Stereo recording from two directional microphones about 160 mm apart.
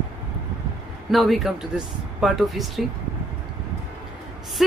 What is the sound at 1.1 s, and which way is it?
A woman's voice, centre (ahead or behind).